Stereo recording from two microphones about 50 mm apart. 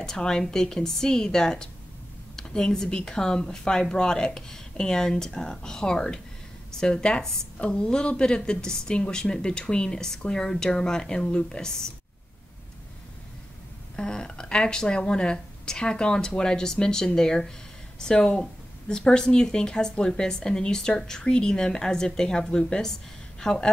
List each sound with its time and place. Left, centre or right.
0.0 s speech: centre
13.9 s speech: centre